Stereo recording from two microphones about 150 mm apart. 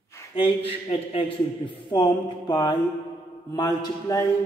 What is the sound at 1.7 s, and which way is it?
Speech, 30° left (ahead or behind).